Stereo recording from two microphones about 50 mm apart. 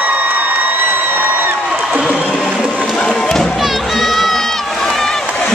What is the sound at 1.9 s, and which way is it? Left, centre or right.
Crowd, right.